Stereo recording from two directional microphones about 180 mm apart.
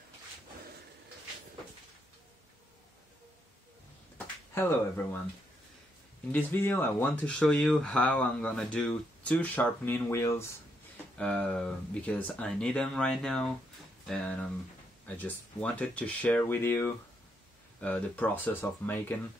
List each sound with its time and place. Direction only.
4.6 s speech: 10° left (ahead or behind)
6.3 s speech: 10° left (ahead or behind)